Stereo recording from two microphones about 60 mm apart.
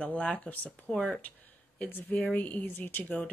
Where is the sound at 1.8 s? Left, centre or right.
Left.